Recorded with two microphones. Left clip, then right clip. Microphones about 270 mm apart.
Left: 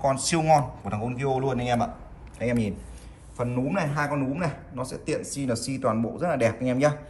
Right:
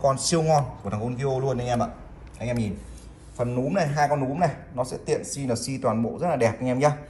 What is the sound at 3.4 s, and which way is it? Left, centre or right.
A man's voice, centre.